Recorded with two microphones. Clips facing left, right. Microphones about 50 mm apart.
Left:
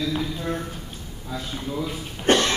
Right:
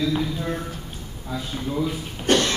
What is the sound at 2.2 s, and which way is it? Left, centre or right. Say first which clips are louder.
Cough: left 1 dB; left.